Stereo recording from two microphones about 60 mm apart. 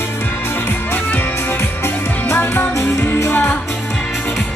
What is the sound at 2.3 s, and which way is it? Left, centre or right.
Music, left.